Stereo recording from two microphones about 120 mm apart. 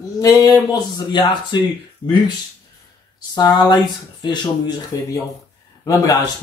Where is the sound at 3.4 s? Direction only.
35° left (ahead or behind).